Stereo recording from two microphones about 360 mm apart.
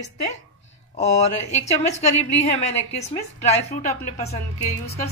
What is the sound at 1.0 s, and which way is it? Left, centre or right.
A woman's voice, centre.